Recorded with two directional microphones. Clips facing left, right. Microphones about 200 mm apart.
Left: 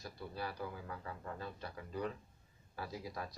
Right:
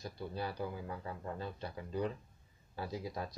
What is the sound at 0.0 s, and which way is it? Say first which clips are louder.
Speech: right 3 dB; 20° right (ahead or behind).